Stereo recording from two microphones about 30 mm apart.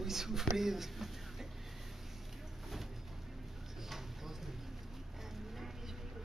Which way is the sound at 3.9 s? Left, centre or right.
Centre.